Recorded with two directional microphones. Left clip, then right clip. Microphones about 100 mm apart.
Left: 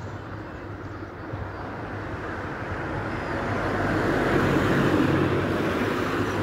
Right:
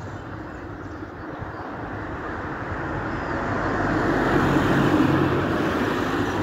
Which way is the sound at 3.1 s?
Centre (ahead or behind).